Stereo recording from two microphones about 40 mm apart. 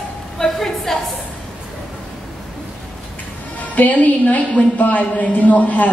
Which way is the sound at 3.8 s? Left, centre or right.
Left.